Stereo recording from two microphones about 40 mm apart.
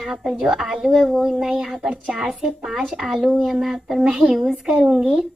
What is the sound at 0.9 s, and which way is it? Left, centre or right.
Speech, centre.